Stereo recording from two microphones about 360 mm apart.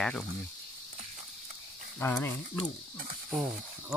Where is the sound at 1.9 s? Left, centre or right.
Centre.